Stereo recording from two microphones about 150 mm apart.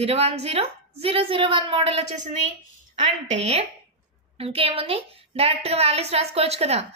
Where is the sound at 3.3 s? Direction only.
45° right (ahead or behind).